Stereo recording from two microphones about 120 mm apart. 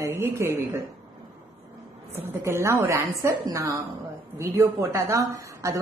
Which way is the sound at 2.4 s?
20° right (ahead or behind).